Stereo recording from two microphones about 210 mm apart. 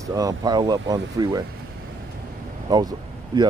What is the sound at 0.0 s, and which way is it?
Speech, 15° right (ahead or behind).